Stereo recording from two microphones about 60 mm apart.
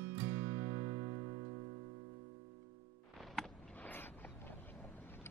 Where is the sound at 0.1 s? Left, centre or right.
Right.